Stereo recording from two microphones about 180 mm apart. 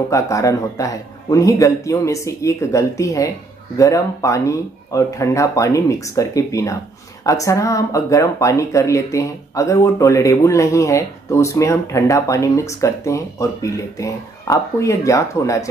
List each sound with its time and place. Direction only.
0.1 s speech: 20° left (ahead or behind)